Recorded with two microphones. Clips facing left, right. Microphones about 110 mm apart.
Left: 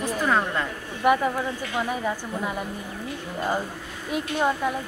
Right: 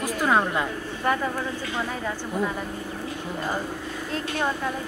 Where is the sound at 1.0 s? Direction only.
15° left (ahead or behind).